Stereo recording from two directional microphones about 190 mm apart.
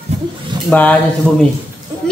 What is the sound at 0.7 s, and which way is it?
Speech, 10° left (ahead or behind).